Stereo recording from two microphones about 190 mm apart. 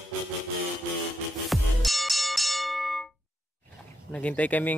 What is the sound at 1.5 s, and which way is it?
Music, centre (ahead or behind).